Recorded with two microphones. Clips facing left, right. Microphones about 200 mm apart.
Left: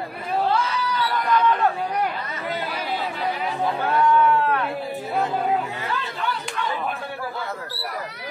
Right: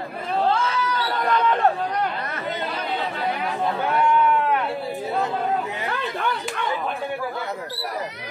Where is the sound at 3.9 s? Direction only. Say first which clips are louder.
Left 2 dB; 20° right (ahead or behind).